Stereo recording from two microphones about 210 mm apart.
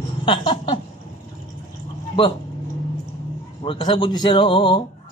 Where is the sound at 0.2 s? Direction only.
20° left (ahead or behind).